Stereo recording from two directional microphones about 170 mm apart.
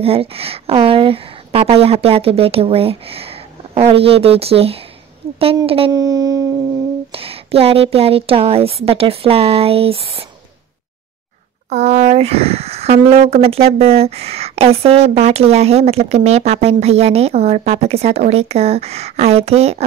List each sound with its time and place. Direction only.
0.0 s a woman's voice: 35° right (ahead or behind)
5.9 s speech: 20° right (ahead or behind)
7.1 s speech: 35° right (ahead or behind)
11.7 s speech: 40° right (ahead or behind)